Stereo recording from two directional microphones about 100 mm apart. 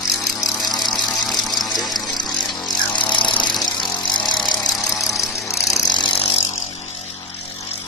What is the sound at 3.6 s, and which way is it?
Vehicle, 50° left (ahead or behind).